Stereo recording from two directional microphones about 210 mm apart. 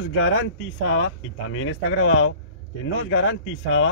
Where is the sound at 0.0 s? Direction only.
65° left (ahead or behind).